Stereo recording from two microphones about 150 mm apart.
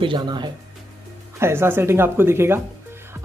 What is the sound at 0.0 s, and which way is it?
Speech, 30° right (ahead or behind).